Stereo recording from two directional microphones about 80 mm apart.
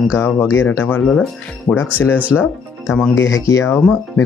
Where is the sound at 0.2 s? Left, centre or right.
Left.